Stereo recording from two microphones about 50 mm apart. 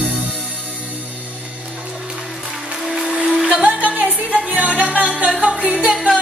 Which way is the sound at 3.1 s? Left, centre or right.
Right.